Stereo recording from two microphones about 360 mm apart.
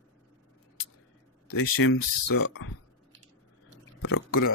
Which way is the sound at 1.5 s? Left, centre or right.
Left.